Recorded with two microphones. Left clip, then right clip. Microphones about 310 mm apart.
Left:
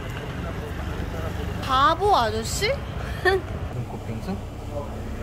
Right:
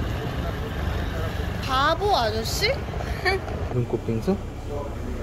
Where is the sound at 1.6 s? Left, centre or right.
Centre.